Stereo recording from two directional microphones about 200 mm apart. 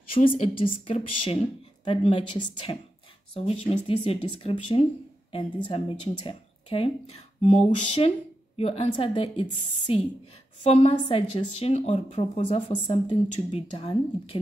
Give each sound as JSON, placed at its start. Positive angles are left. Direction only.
{"t": 0.3, "sound": "a woman's voice", "side_deg": 25}
{"t": 10.6, "sound": "a woman's voice", "side_deg": 30}